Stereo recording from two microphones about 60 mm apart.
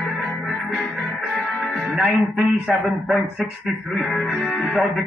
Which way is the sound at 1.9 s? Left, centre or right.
Centre.